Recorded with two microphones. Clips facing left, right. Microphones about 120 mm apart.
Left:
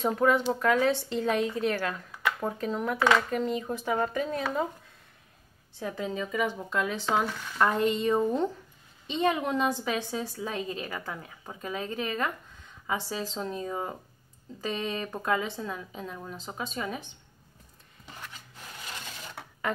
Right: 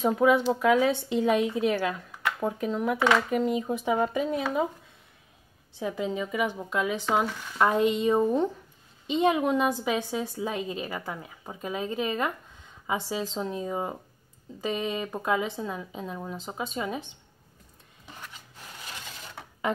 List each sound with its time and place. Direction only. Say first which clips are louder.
0.0 s speech: right 3 dB; 5° right (ahead or behind)
5.8 s speech: right 3 dB; 15° right (ahead or behind)